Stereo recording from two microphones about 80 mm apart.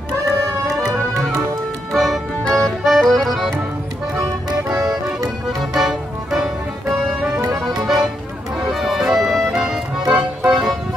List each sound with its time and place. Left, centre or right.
1.9 s music: centre
2.5 s accordion: centre
4.5 s music: right
5.8 s music: centre